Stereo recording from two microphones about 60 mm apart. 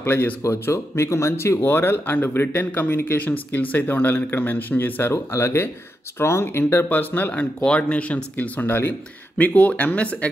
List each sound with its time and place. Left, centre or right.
0.0 s speech: left
0.4 s speech: left
5.1 s speech: left
9.4 s speech: left